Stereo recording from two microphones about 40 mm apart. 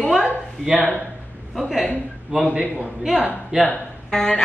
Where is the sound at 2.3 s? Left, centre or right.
Right.